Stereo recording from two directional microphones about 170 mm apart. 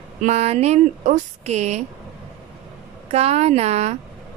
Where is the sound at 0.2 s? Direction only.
40° right (ahead or behind).